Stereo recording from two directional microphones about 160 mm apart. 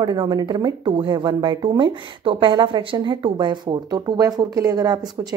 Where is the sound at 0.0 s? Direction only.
25° right (ahead or behind).